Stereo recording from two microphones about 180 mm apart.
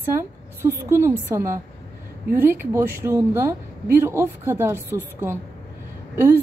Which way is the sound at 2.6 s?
15° right (ahead or behind).